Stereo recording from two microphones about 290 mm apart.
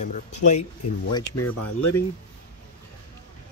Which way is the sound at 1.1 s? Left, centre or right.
Centre.